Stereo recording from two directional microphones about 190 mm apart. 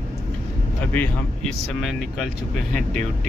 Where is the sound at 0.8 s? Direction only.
10° left (ahead or behind).